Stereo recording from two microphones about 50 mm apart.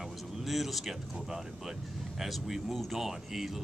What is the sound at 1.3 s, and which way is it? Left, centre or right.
Speech, centre.